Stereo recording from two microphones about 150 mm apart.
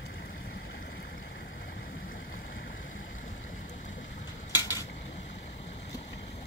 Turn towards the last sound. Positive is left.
turn(degrees=25)  # may be behind; listen again after turning